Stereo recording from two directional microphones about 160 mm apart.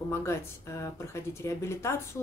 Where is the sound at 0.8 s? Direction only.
15° left (ahead or behind).